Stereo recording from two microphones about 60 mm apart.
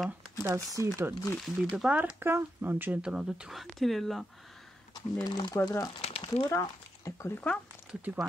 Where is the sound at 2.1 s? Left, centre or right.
Right.